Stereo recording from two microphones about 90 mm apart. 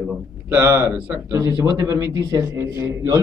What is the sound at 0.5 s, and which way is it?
A man's voice, 30° right (ahead or behind).